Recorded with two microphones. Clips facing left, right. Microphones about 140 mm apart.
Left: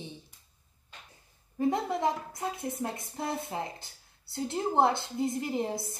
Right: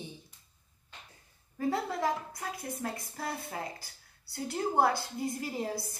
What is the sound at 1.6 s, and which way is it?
A woman's voice, 20° left (ahead or behind).